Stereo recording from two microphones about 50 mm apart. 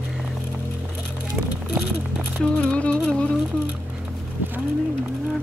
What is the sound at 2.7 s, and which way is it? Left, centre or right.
Music, left.